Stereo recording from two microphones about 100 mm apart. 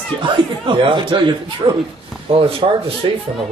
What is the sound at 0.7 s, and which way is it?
Speech, 55° right (ahead or behind).